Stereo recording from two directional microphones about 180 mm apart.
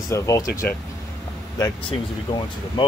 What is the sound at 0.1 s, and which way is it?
Speech, 20° left (ahead or behind).